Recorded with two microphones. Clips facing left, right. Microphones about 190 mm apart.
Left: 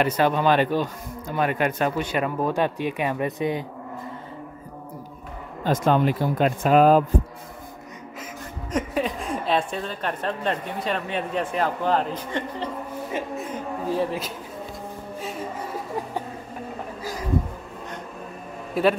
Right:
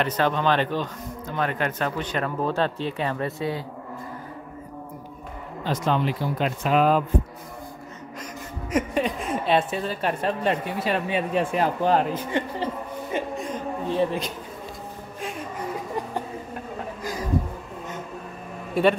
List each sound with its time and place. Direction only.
0.0 s speech: 10° left (ahead or behind)
5.6 s speech: 50° left (ahead or behind)
8.7 s speech: centre (ahead or behind)
13.1 s a man's voice: 5° left (ahead or behind)
18.8 s a man's voice: centre (ahead or behind)